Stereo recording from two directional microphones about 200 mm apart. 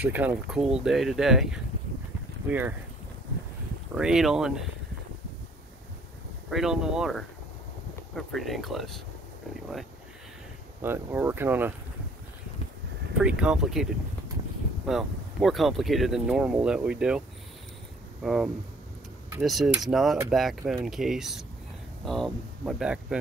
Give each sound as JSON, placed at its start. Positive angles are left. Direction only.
{"t": 0.0, "sound": "speech", "side_deg": -10}
{"t": 3.9, "sound": "speech", "side_deg": -5}
{"t": 6.5, "sound": "speech", "side_deg": -5}
{"t": 10.8, "sound": "speech", "side_deg": -10}
{"t": 13.2, "sound": "speech", "side_deg": -5}
{"t": 14.9, "sound": "speech", "side_deg": 0}
{"t": 18.2, "sound": "speech", "side_deg": 0}